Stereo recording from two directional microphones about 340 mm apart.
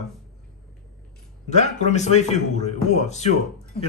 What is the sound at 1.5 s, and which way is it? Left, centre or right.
A man's voice, centre.